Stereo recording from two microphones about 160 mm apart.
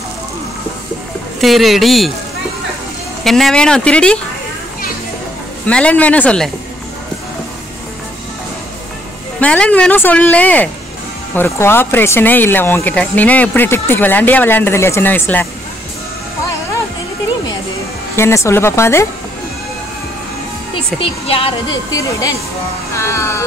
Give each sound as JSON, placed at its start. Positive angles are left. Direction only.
{"t": 1.4, "sound": "speech", "side_deg": 0}
{"t": 3.3, "sound": "speech", "side_deg": 0}
{"t": 5.7, "sound": "speech", "side_deg": 5}
{"t": 9.4, "sound": "speech", "side_deg": 5}
{"t": 18.1, "sound": "speech", "side_deg": 15}
{"t": 20.7, "sound": "a woman's voice", "side_deg": 35}
{"t": 22.9, "sound": "speech", "side_deg": 15}